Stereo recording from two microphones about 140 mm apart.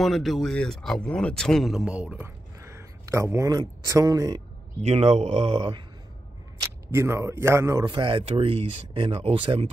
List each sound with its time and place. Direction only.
0.0 s speech: centre (ahead or behind); by 4.4 s 25° right (ahead or behind)
4.8 s speech: 50° right (ahead or behind)
6.6 s speech: 20° right (ahead or behind)
7.8 s speech: 35° right (ahead or behind)